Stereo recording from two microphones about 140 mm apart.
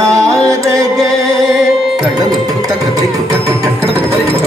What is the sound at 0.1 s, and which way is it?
Music, 20° right (ahead or behind).